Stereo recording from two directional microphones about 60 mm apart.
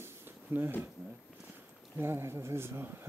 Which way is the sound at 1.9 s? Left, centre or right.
Right.